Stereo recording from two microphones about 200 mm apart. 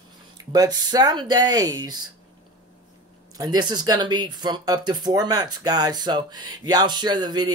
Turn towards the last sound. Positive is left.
turn(degrees=-20)  # may be behind; listen again after turning